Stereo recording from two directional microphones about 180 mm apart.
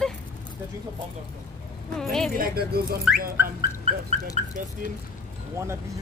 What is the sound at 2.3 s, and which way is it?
Speech, 60° right (ahead or behind).